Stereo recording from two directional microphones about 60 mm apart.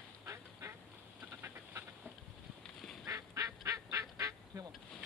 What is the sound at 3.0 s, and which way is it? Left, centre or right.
Goose, right.